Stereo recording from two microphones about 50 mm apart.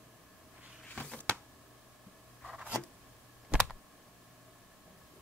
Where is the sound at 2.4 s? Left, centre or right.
Centre.